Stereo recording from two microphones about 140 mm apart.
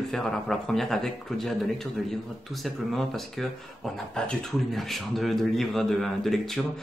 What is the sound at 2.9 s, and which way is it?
Speech, centre (ahead or behind).